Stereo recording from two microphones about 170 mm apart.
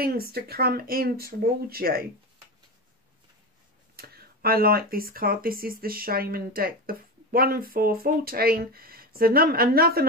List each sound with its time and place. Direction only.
0.0 s speech: 65° right (ahead or behind)
3.9 s speech: 65° right (ahead or behind)